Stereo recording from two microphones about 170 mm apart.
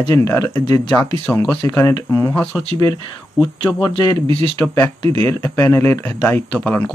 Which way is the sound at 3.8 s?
25° left (ahead or behind).